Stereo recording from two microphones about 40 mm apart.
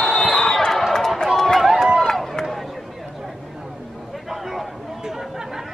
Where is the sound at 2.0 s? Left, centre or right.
Centre.